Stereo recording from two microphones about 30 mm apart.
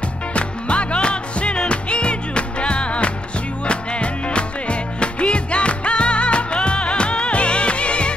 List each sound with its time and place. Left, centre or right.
0.3 s music: left